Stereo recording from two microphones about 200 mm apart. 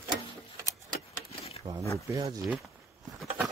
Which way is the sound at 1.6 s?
20° right (ahead or behind).